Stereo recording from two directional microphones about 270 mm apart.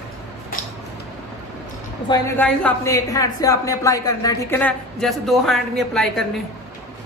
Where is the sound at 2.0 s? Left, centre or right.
Centre.